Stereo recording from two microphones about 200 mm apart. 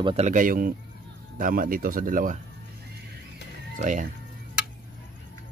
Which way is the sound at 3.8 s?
40° right (ahead or behind).